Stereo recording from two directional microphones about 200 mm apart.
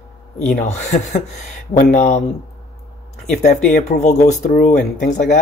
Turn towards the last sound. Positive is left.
turn(degrees=40)  # may be behind; listen again after turning